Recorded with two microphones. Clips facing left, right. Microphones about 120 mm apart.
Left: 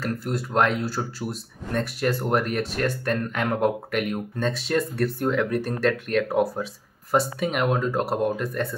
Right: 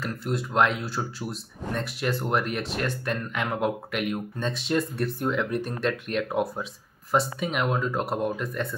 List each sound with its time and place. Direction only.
0.0 s speech: 40° left (ahead or behind)